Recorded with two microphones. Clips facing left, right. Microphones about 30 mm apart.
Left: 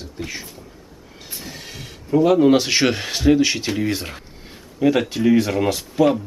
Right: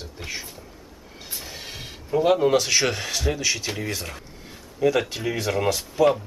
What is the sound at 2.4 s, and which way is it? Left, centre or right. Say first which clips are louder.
A man's voice: left 5 dB; centre.